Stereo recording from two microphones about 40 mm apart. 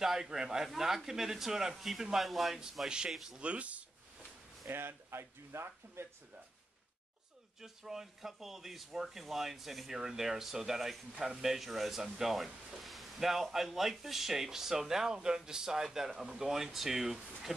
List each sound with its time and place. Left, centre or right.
0.0 s a man's voice: centre
3.3 s speech: right
4.7 s speech: right
7.6 s speech: centre
9.9 s speech: centre